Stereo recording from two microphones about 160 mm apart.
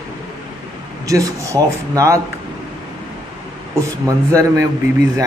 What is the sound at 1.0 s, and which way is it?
A man's voice, 20° right (ahead or behind).